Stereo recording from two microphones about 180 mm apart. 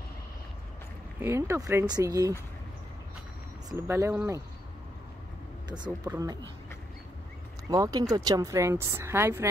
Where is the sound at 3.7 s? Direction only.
15° right (ahead or behind).